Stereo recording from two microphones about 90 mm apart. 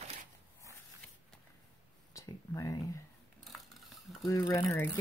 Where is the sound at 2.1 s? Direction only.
35° left (ahead or behind).